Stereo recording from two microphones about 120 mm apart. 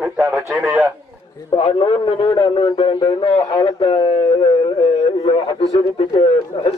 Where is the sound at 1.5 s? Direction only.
50° left (ahead or behind).